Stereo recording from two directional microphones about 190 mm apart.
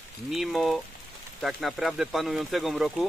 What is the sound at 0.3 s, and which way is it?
Speech, centre (ahead or behind).